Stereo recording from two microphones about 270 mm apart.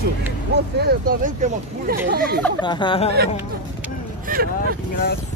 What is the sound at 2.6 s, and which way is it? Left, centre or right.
Speech, centre.